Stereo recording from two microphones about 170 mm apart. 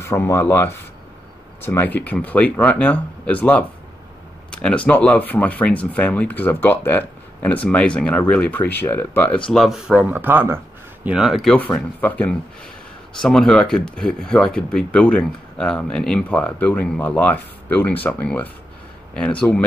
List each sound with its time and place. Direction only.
0.0 s speech: 15° left (ahead or behind)
9.5 s speech: centre (ahead or behind)
11.5 s speech: 10° left (ahead or behind)